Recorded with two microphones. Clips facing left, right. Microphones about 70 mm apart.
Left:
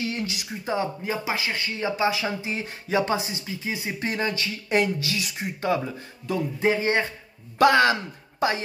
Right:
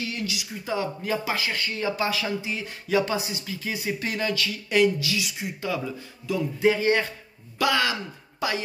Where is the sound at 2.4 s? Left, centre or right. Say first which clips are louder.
Left 1 dB; left.